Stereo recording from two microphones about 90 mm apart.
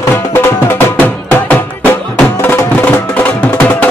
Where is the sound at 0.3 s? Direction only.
30° left (ahead or behind).